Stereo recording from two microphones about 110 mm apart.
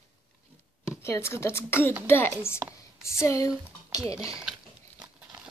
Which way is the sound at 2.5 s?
10° right (ahead or behind).